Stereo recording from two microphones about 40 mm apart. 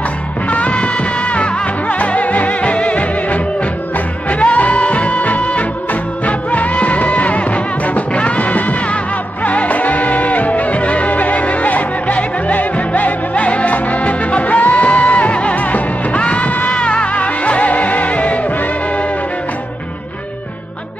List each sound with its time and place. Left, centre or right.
0.5 s music: left